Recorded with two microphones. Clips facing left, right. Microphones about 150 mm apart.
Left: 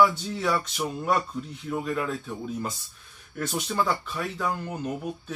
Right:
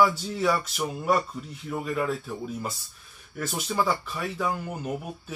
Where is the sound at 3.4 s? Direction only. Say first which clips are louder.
Even; 5° right (ahead or behind).